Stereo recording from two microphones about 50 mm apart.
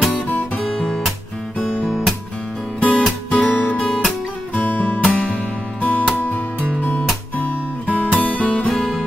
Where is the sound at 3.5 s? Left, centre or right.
Left.